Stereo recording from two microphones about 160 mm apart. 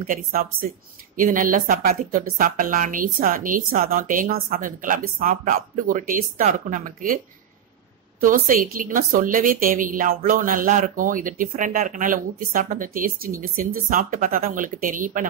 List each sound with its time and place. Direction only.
0.0 s a woman's voice: 60° right (ahead or behind)
8.2 s a woman's voice: 60° right (ahead or behind)